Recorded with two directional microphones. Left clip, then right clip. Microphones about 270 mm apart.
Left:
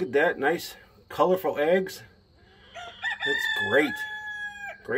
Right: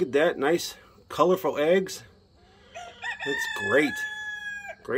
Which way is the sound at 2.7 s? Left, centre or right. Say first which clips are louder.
Left 3 dB; right.